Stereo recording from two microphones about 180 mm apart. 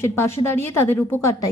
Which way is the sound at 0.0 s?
15° left (ahead or behind).